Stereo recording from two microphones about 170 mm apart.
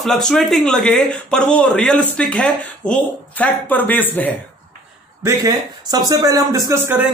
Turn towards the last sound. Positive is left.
turn(degrees=-20)  # may be behind; listen again after turning